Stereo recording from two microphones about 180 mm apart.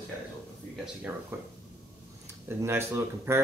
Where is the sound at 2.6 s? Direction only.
15° right (ahead or behind).